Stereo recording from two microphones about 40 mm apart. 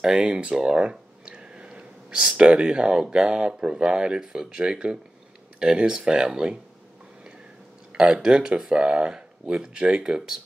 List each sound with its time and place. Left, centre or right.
0.1 s a sound: right
2.3 s speech: right
7.9 s speech: right